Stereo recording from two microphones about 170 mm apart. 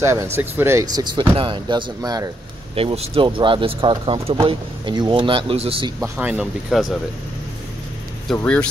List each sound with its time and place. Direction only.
0.0 s speech: 15° right (ahead or behind)
2.7 s speech: 35° right (ahead or behind)
6.1 s speech: 10° right (ahead or behind)
8.4 s speech: 5° left (ahead or behind)